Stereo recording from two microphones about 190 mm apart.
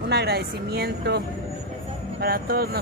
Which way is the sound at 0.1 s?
60° right (ahead or behind).